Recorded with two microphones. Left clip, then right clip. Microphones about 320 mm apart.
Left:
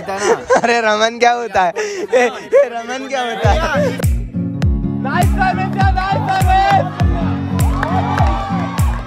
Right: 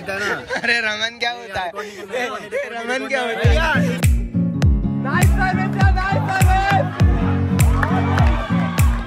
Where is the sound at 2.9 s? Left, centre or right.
Centre.